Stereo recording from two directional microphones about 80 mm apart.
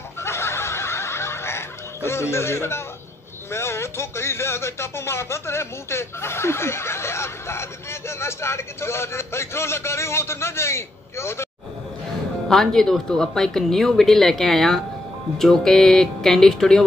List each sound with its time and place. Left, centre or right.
0.2 s snicker: left
3.5 s speech: left
12.4 s speech: centre